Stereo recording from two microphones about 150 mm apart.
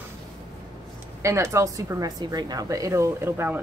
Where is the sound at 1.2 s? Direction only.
20° right (ahead or behind).